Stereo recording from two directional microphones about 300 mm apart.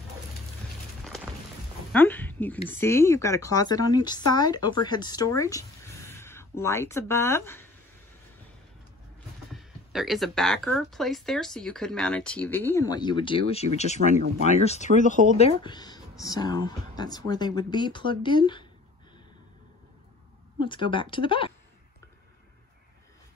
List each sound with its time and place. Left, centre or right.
1.0 s music: centre
1.9 s speech: centre
9.5 s speech: centre
20.6 s speech: centre